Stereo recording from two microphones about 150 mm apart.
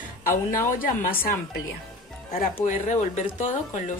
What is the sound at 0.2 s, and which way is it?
A woman's voice, 65° left (ahead or behind).